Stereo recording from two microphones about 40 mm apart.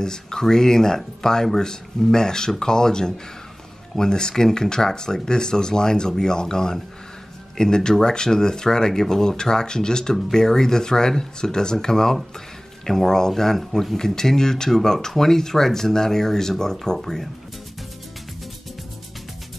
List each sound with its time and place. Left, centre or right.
0.0 s speech: centre